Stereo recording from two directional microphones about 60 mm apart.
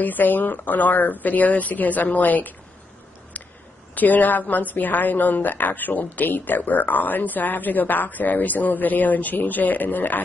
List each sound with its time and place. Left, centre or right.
0.0 s a woman's voice: left
3.9 s a woman's voice: left